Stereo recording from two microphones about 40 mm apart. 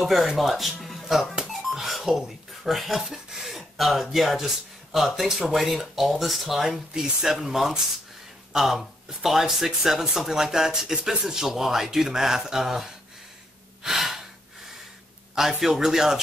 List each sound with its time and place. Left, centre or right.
0.0 s speech: centre
1.5 s a sound: centre
3.1 s speech: centre
6.9 s speech: centre
13.8 s breathing: centre
15.3 s speech: centre